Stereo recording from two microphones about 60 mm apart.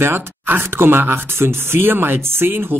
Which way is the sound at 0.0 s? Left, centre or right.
Right.